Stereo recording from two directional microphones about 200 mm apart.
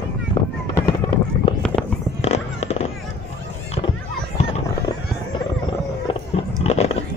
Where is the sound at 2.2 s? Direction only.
35° left (ahead or behind).